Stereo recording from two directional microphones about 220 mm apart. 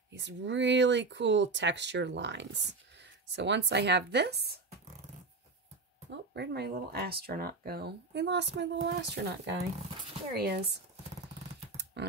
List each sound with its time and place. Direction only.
0.1 s speech: 55° right (ahead or behind)
6.0 s speech: 50° right (ahead or behind)
11.7 s typing: 50° right (ahead or behind)